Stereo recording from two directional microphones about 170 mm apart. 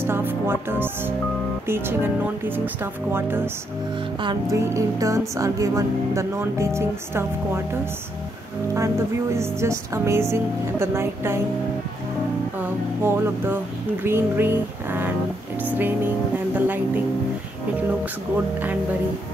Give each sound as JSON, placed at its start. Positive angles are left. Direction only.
{"t": 0.0, "sound": "music", "side_deg": -15}
{"t": 1.7, "sound": "speech", "side_deg": -10}
{"t": 4.2, "sound": "music", "side_deg": -25}
{"t": 4.6, "sound": "speech", "side_deg": -20}
{"t": 8.7, "sound": "speech", "side_deg": -15}
{"t": 13.0, "sound": "speech", "side_deg": -15}